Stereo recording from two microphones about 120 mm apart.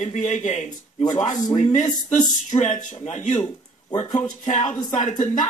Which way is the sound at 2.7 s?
85° left.